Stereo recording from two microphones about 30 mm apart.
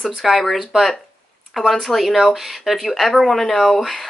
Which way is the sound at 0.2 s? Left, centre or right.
Centre.